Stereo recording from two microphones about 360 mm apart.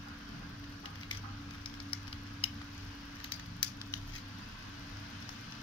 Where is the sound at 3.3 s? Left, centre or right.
Centre.